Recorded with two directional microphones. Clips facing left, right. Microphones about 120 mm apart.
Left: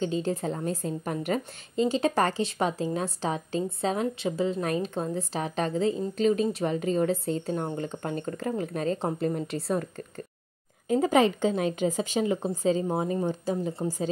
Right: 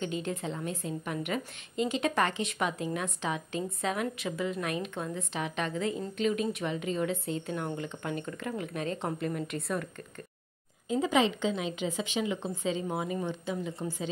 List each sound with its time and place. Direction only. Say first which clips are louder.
0.0 s a woman's voice: left 6 dB; 30° left (ahead or behind)
10.9 s a woman's voice: left 5 dB; 45° left (ahead or behind)